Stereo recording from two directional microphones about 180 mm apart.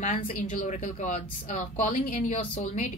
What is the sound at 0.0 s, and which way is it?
A woman's voice, 45° left (ahead or behind).